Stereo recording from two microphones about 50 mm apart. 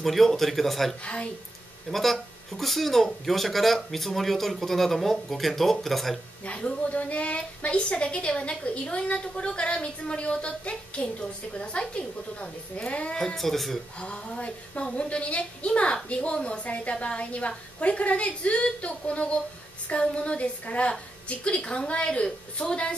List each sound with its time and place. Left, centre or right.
0.0 s speech: centre
1.0 s a woman's voice: left
1.9 s speech: centre
6.4 s a woman's voice: left
13.2 s speech: centre
13.9 s a woman's voice: left